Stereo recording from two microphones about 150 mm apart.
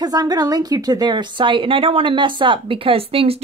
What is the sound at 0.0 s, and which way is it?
A woman's voice, 25° right (ahead or behind).